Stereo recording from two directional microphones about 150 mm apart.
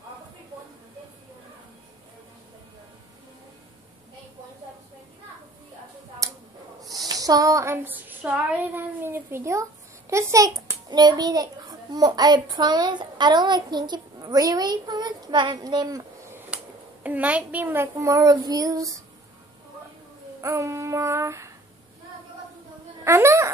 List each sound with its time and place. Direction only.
6.2 s a sound: 20° right (ahead or behind)
17.0 s a child's voice: 10° right (ahead or behind)
20.3 s a child's voice: 20° right (ahead or behind)
23.0 s a woman's voice: 20° right (ahead or behind)